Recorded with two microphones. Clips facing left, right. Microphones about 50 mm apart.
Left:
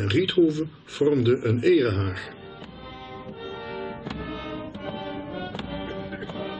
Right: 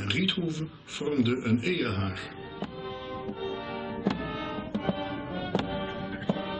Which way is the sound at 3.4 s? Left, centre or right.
Centre.